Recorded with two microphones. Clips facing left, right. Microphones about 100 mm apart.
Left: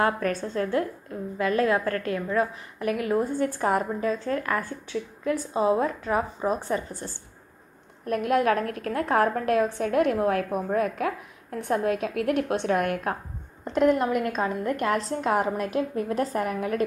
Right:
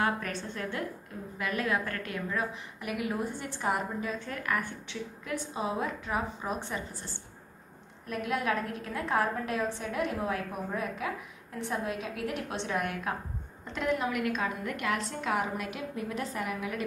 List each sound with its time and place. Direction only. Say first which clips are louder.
0.0 s a woman's voice: left 6 dB; 40° left (ahead or behind)
8.1 s a woman's voice: left 8 dB; 55° left (ahead or behind)